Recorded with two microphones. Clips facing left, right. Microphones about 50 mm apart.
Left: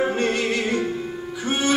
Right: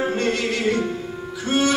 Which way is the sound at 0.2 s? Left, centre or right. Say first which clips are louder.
Even; left.